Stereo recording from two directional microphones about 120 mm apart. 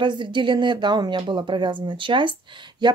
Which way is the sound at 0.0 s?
40° right (ahead or behind).